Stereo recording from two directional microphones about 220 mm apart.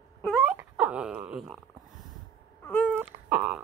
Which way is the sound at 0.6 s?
5° right (ahead or behind).